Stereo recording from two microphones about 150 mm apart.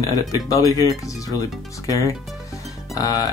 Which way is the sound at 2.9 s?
25° left (ahead or behind).